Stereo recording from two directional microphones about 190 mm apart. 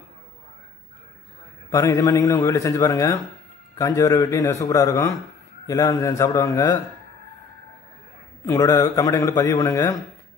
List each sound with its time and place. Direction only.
1.7 s a man's voice: 20° left (ahead or behind)
8.5 s a man's voice: 15° left (ahead or behind)